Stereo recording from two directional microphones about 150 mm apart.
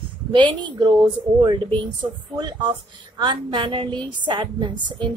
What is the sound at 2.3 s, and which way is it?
A woman's voice, 30° right (ahead or behind).